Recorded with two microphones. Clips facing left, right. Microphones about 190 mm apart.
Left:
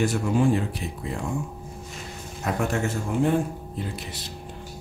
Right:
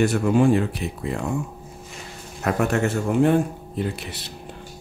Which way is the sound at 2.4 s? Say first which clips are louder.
Right 4 dB; 65° right (ahead or behind).